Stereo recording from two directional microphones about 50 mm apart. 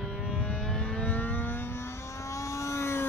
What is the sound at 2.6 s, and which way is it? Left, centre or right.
Vehicle, left.